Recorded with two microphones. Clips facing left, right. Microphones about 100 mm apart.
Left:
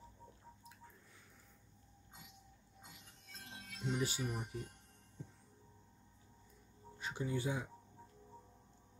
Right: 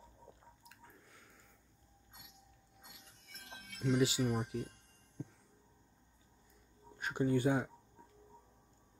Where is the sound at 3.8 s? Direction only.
90° right; by 4.6 s 75° right (ahead or behind).